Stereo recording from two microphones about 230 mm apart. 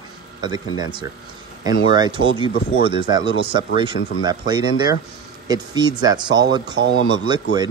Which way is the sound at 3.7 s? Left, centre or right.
Centre.